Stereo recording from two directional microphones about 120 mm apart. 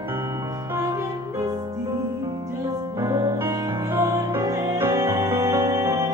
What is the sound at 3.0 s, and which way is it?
Music, 30° right (ahead or behind).